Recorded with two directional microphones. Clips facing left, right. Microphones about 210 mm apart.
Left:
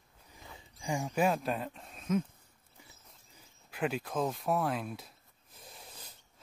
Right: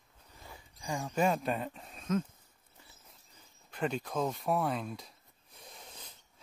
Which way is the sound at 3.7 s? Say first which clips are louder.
Even; 5° left (ahead or behind).